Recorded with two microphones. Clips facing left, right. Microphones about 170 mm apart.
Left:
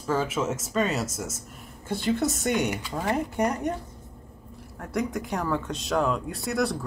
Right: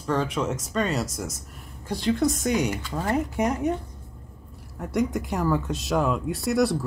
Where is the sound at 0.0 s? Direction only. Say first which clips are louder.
Right 1 dB; 5° left (ahead or behind).